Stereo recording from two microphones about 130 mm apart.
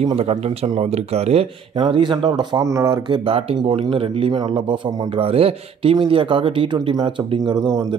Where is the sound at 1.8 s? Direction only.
40° right (ahead or behind).